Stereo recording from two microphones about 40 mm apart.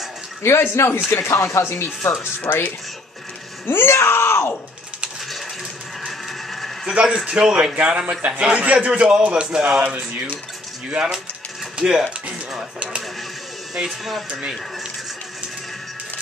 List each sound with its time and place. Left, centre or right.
0.4 s speech: left
2.4 s speech: left
3.6 s speech: left
6.0 s a sound: centre
6.9 s a man's voice: right
9.8 s speech: right
10.9 s a man's voice: right
13.8 s speech: centre